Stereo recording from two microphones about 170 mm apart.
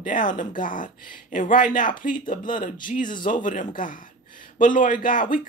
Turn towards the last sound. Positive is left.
turn(degrees=50)  # may be behind; listen again after turning